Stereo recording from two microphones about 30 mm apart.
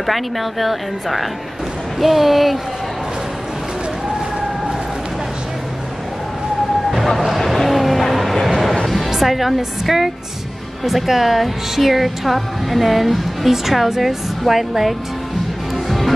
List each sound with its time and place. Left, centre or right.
0.0 s speech: centre
7.2 s a sound: centre
8.8 s music: centre
9.8 s a woman's voice: centre